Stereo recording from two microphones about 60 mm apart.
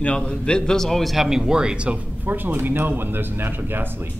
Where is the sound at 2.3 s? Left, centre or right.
Right.